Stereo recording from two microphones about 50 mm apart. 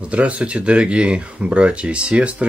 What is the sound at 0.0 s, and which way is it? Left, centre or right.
Speech, right.